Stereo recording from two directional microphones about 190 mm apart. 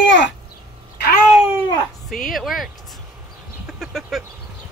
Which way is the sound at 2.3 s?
Centre (ahead or behind).